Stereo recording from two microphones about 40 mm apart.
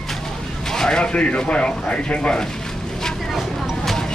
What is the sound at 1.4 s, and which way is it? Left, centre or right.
Speech, left.